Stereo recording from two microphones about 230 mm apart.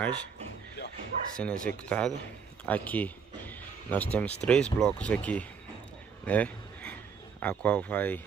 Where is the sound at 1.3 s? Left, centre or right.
Centre.